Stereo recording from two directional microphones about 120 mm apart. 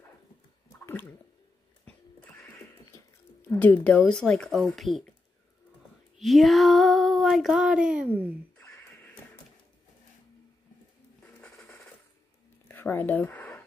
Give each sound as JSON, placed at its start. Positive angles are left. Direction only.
{"t": 0.7, "sound": "gargling", "side_deg": 20}
{"t": 1.9, "sound": "music", "side_deg": 15}
{"t": 3.4, "sound": "speech", "side_deg": 15}
{"t": 6.1, "sound": "female singing", "side_deg": 0}
{"t": 8.5, "sound": "a sound", "side_deg": 25}
{"t": 8.8, "sound": "neigh", "side_deg": 15}
{"t": 11.2, "sound": "a sound", "side_deg": 5}
{"t": 12.6, "sound": "whispering", "side_deg": 15}